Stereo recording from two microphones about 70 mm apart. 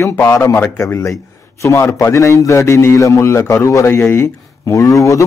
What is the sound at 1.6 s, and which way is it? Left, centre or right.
A man's voice, left.